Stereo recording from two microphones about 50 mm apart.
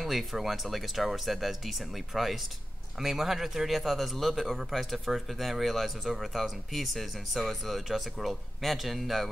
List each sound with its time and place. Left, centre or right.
0.0 s speech: centre